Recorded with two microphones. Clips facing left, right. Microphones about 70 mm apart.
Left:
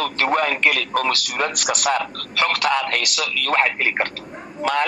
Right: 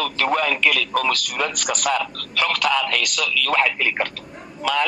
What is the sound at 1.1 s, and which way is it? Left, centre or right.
A man's voice, left.